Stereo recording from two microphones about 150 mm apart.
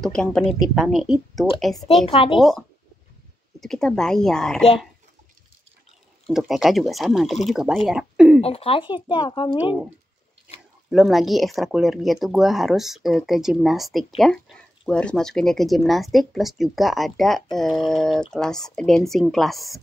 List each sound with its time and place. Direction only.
0.0 s speech: 5° left (ahead or behind)
3.6 s speech: 5° left (ahead or behind)
6.2 s speech: centre (ahead or behind)
8.4 s speech: 40° left (ahead or behind)
10.9 s speech: centre (ahead or behind)